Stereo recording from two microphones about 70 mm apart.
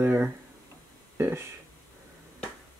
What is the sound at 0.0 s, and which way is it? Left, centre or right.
Speech, right.